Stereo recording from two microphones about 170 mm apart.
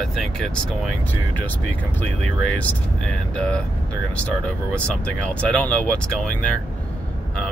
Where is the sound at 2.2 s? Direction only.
5° left (ahead or behind).